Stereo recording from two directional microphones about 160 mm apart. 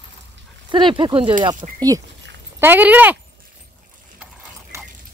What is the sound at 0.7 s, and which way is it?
Speech, 30° right (ahead or behind).